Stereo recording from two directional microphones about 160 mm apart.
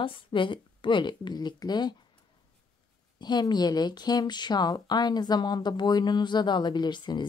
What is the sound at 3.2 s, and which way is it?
Speech, 25° left (ahead or behind).